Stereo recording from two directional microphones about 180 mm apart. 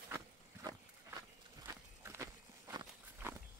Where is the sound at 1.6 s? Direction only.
15° right (ahead or behind).